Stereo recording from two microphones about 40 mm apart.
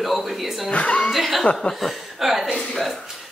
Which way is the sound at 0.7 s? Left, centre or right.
Left.